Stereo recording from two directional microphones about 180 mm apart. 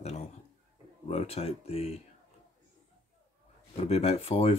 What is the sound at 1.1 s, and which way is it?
Speech, 35° left (ahead or behind).